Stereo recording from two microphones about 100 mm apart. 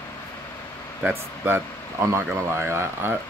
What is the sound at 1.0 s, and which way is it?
Speech, 20° right (ahead or behind).